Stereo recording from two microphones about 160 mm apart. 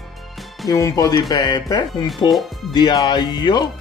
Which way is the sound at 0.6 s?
20° left (ahead or behind).